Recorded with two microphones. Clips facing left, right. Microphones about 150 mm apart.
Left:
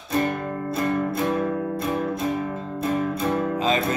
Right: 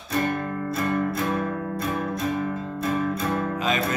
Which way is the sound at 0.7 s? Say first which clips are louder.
Left 2 dB; 25° left (ahead or behind).